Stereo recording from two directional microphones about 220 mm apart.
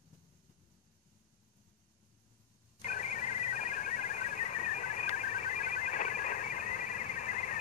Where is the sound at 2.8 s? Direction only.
35° left (ahead or behind).